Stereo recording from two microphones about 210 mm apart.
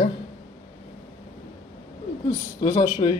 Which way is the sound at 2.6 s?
30° left (ahead or behind).